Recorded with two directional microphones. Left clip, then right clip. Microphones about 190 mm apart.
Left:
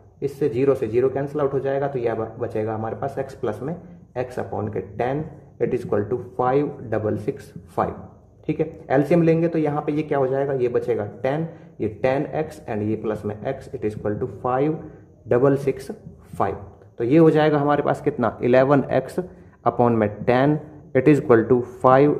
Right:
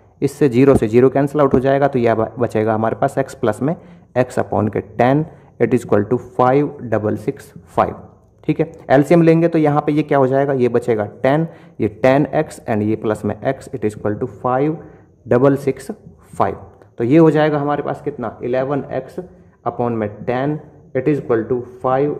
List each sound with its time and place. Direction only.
0.2 s a man's voice: 40° right (ahead or behind); by 17.6 s 15° right (ahead or behind)
17.6 s a man's voice: centre (ahead or behind)